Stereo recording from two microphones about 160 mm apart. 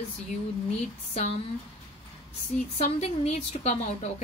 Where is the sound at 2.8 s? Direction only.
40° left (ahead or behind).